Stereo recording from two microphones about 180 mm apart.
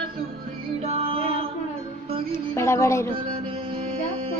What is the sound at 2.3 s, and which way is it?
Music, 15° left (ahead or behind).